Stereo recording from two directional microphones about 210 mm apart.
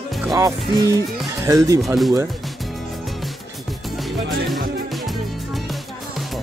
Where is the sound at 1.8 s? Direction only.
Centre (ahead or behind).